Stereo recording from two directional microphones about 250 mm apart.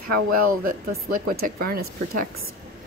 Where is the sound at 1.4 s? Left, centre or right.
Right.